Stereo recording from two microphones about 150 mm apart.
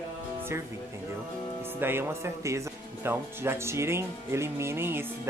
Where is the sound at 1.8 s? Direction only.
15° right (ahead or behind).